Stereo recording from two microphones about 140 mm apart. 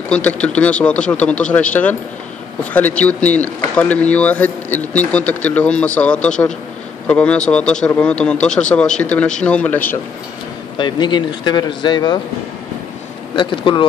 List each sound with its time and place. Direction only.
0.1 s speech: 10° left (ahead or behind)
10.8 s speech: 35° left (ahead or behind)
13.4 s speech: 35° left (ahead or behind)